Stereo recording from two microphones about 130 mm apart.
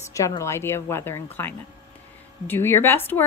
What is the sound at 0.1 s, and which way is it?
A woman's voice, 25° left (ahead or behind).